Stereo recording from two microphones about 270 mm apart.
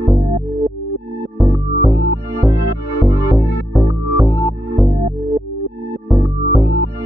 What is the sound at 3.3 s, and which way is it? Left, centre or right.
Music, centre.